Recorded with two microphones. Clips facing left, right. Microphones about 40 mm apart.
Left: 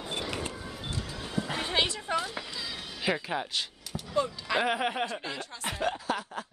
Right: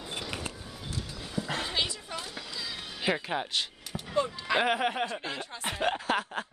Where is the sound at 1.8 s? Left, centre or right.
Left.